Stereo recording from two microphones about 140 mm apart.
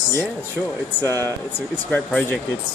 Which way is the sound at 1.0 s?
15° left (ahead or behind).